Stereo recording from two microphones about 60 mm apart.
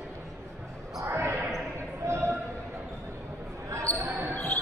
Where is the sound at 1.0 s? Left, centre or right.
Right.